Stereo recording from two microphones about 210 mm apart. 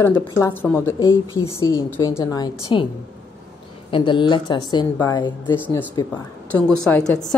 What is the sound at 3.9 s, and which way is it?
A woman's voice, 25° left (ahead or behind).